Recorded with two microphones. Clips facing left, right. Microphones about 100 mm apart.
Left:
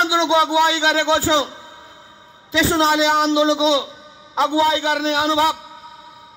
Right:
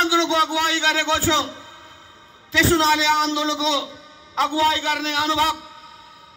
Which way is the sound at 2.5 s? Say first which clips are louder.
Left 1 dB; 15° left (ahead or behind).